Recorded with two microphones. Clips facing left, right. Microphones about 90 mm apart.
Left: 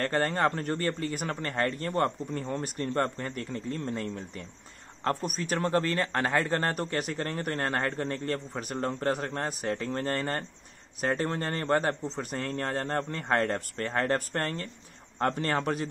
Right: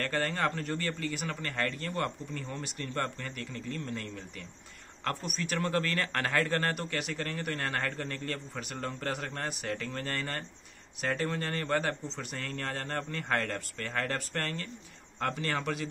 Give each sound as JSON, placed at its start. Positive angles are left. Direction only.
{"t": 0.0, "sound": "speech", "side_deg": 35}